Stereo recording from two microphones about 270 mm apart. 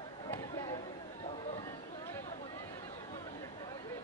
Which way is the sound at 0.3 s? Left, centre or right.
Centre.